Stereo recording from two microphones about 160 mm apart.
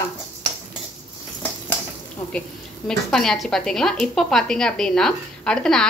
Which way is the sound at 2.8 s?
5° left (ahead or behind).